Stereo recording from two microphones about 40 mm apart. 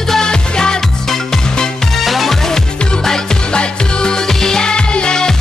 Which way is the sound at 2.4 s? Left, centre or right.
Centre.